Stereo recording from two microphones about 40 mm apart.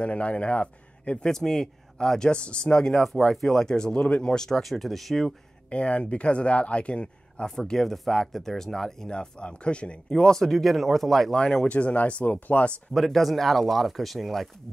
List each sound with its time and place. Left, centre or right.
0.0 s a man's voice: left
1.2 s speech: centre
4.5 s speech: centre
5.7 s speech: left
7.6 s speech: centre
9.1 s speech: left
10.3 s speech: centre
11.6 s speech: left
12.9 s speech: centre